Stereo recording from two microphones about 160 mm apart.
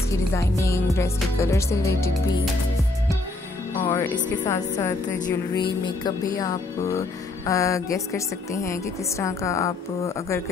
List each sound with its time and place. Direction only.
0.3 s speech: 20° left (ahead or behind)
3.8 s speech: 25° left (ahead or behind)
5.6 s speech: 30° left (ahead or behind)